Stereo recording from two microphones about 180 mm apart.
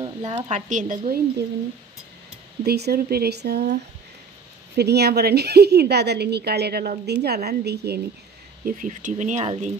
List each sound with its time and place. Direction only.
0.0 s speech: 30° right (ahead or behind); by 1.2 s 50° right (ahead or behind)
2.6 s a woman's voice: 60° right (ahead or behind)
4.7 s a woman's voice: 65° right (ahead or behind)
8.6 s speech: 45° right (ahead or behind)